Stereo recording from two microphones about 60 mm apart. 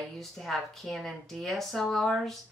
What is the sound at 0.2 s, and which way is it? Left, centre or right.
Speech, centre.